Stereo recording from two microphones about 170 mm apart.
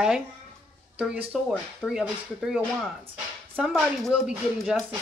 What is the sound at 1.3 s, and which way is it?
Speech, 5° right (ahead or behind).